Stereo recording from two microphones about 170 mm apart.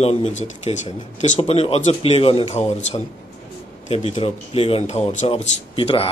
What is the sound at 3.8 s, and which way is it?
Speech, 40° left (ahead or behind).